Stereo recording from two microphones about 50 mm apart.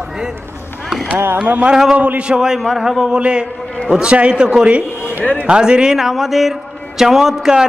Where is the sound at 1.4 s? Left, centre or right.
Right.